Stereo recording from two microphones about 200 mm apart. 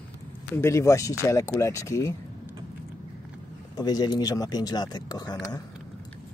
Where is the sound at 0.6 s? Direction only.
15° left (ahead or behind).